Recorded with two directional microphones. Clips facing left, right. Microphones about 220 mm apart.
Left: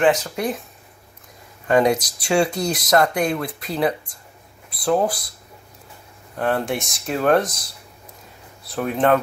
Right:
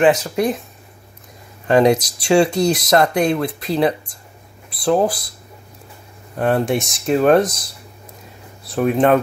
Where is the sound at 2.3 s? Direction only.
25° right (ahead or behind).